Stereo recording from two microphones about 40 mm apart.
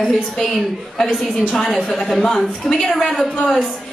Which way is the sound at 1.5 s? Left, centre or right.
Centre.